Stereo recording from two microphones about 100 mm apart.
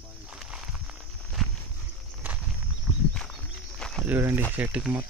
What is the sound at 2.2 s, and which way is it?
Walk, 15° right (ahead or behind).